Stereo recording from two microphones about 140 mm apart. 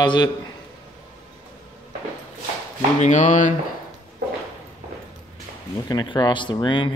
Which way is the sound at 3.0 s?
60° left (ahead or behind).